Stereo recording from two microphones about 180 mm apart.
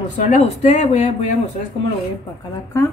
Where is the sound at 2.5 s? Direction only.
15° left (ahead or behind).